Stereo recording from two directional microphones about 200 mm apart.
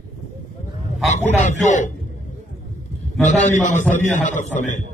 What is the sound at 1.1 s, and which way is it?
Speech, 35° left (ahead or behind).